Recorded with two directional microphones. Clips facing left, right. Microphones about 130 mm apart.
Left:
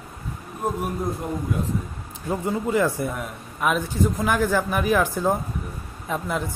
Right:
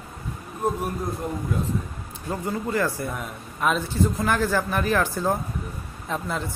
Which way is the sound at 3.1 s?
5° left (ahead or behind).